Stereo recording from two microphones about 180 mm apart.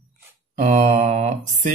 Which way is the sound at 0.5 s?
40° right (ahead or behind).